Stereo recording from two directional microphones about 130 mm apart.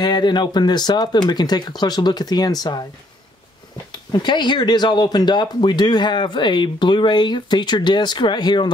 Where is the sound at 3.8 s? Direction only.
35° left (ahead or behind).